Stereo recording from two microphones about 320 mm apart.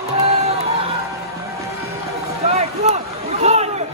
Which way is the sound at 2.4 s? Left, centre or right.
Right.